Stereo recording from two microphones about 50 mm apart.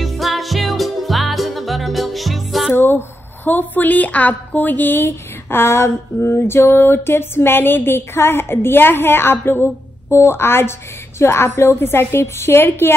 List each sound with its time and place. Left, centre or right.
0.0 s music: centre
2.7 s a woman's voice: left